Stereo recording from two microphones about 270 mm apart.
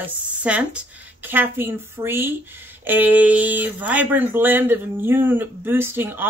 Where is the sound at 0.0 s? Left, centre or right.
Centre.